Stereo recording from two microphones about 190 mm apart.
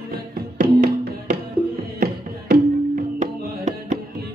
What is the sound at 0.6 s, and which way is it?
Music, 45° right (ahead or behind).